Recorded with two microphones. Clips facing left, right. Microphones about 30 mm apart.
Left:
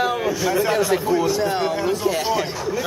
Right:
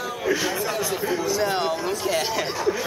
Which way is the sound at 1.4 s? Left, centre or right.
Centre.